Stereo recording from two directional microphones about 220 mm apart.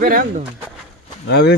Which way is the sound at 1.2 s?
50° left (ahead or behind).